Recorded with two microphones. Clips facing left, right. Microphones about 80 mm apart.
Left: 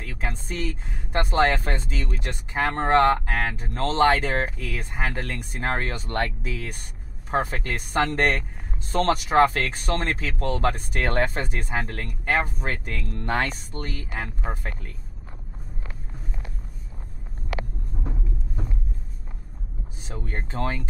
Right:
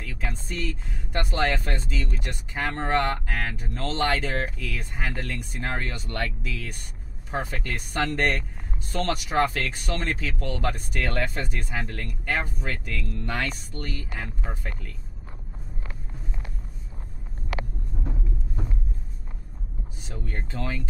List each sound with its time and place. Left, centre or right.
0.0 s a sound: left
0.7 s speech: left
11.4 s speech: left
20.2 s speech: left